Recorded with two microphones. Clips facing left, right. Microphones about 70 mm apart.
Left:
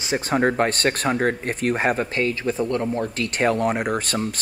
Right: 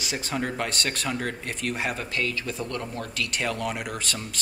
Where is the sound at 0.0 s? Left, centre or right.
Left.